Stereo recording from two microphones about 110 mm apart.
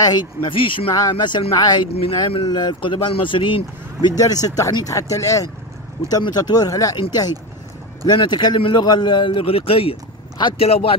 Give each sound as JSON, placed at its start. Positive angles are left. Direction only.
{"t": 0.0, "sound": "a man's voice", "side_deg": 40}
{"t": 0.9, "sound": "speech", "side_deg": 40}
{"t": 2.0, "sound": "speech", "side_deg": 60}
{"t": 2.4, "sound": "a man's voice", "side_deg": 40}
{"t": 4.2, "sound": "a man's voice", "side_deg": 35}